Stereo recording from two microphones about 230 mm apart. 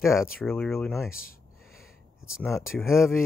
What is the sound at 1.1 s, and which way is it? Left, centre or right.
Speech, left.